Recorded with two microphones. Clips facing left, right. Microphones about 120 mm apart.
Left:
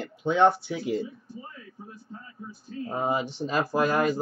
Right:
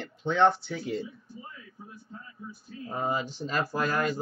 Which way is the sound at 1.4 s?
45° left (ahead or behind).